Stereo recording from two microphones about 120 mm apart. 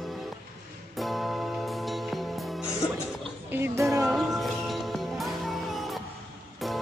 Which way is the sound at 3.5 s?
20° right (ahead or behind).